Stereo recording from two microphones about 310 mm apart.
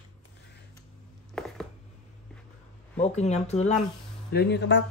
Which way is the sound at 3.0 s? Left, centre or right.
Left.